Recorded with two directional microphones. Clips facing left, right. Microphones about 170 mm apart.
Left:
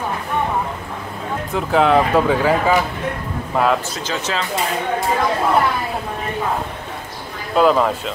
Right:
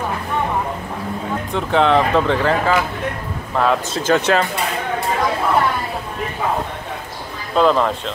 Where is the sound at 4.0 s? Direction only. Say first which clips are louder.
Right 7 dB; 55° right (ahead or behind).